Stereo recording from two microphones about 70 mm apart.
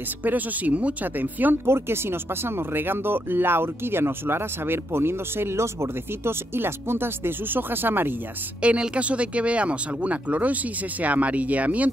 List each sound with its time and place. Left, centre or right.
0.2 s speech: right
8.6 s speech: centre